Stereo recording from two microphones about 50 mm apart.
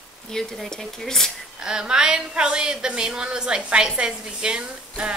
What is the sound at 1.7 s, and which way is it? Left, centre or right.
A woman's voice, centre.